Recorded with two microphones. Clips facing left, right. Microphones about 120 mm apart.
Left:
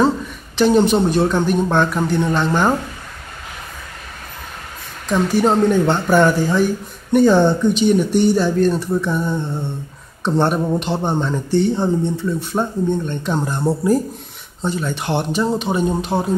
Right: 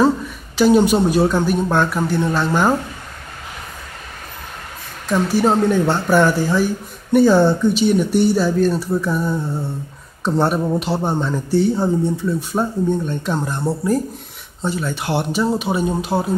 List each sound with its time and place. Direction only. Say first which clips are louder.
0.6 s speech: even; 10° right (ahead or behind)
5.0 s speech: even; 5° right (ahead or behind)